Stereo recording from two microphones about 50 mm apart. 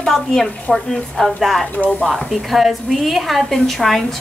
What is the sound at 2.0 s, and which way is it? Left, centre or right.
A woman's voice, centre.